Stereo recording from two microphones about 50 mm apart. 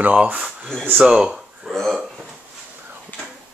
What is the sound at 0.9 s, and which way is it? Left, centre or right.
Speech, centre.